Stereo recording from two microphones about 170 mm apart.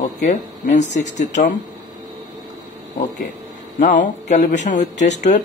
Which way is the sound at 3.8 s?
50° left (ahead or behind).